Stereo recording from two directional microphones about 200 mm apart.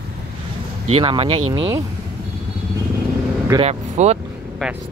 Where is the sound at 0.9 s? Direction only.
25° right (ahead or behind).